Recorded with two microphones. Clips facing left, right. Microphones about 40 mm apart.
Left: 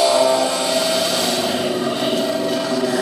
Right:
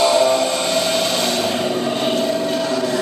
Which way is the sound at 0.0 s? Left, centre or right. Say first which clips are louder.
Even; right.